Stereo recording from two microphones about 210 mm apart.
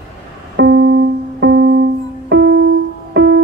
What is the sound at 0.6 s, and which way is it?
Music, 55° right (ahead or behind).